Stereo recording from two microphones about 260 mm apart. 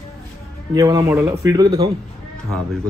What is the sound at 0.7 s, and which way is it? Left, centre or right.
Speech, centre.